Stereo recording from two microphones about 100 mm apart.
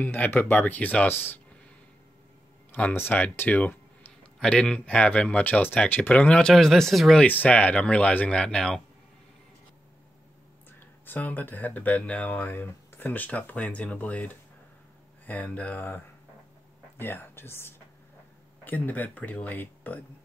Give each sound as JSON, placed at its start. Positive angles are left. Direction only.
{"t": 0.0, "sound": "speech", "side_deg": 20}
{"t": 2.7, "sound": "speech", "side_deg": 20}
{"t": 7.2, "sound": "speech", "side_deg": 15}
{"t": 11.1, "sound": "speech", "side_deg": 15}
{"t": 17.0, "sound": "speech", "side_deg": 20}